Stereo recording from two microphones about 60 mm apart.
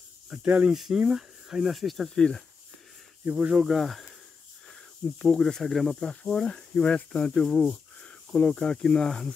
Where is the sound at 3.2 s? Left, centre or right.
Centre.